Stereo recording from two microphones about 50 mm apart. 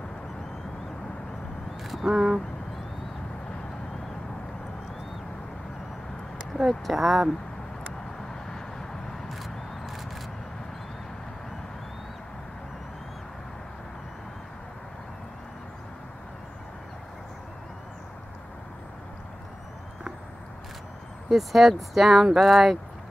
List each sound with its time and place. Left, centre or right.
1.8 s vehicle: centre
2.1 s speech: centre
6.7 s speech: centre
8.5 s vehicle: centre
9.3 s a sound: centre
21.3 s speech: centre